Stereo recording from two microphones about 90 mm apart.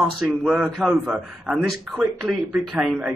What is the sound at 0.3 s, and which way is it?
A man's voice, 15° right (ahead or behind).